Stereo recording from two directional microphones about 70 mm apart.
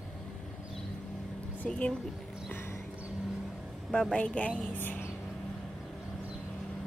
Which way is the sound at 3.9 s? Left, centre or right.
Centre.